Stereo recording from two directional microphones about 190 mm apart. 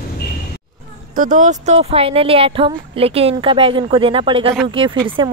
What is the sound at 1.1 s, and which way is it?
Speech, 45° right (ahead or behind).